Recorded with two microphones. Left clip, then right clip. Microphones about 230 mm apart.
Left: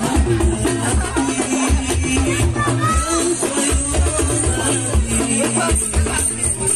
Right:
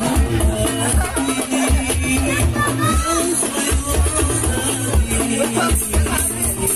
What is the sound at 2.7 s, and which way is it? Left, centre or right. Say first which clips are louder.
Music: left 2 dB; right.